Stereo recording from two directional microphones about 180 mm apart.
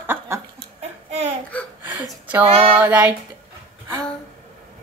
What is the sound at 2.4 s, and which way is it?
Female singing, 30° right (ahead or behind).